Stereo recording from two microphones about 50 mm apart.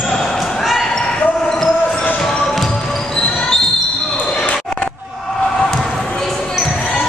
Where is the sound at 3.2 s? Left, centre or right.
Centre.